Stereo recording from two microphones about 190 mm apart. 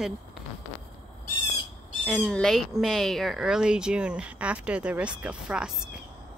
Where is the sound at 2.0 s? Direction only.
Centre (ahead or behind).